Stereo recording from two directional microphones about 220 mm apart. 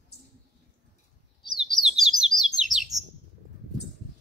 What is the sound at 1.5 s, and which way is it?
Chirp, centre (ahead or behind).